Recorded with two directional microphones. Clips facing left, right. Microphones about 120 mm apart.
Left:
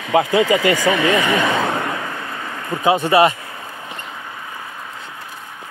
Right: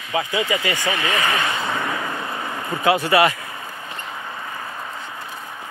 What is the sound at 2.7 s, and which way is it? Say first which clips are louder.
Speech: left 4 dB; 10° left (ahead or behind).